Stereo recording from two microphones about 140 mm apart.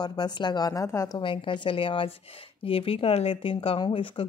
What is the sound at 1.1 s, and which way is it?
A woman's voice, 35° left (ahead or behind).